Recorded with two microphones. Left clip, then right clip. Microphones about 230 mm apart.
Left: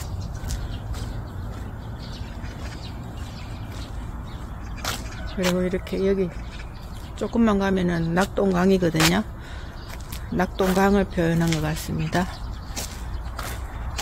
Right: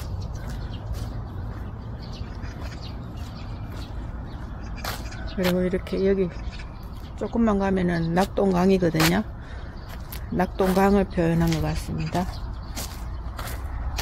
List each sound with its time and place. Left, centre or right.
4.8 s speech: centre
7.2 s speech: centre
10.3 s speech: centre